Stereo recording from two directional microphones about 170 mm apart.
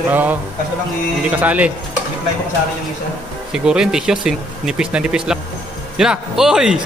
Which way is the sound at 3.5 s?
5° right (ahead or behind).